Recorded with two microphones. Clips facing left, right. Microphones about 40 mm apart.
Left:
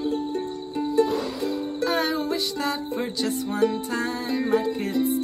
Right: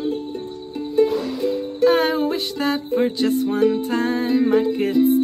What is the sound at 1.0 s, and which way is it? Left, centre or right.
Music, right.